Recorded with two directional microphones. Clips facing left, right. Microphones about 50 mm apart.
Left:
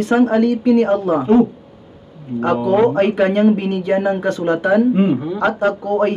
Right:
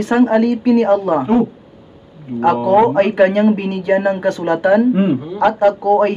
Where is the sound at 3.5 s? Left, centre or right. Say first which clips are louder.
Right 1 dB; right.